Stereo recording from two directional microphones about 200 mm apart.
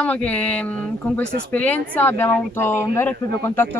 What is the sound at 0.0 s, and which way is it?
Speech, 5° left (ahead or behind).